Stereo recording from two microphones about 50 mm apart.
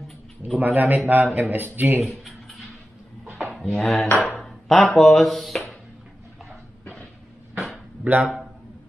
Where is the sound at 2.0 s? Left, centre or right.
Centre.